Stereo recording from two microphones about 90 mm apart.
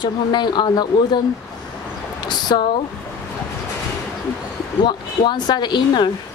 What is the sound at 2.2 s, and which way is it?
Speech, 50° left (ahead or behind).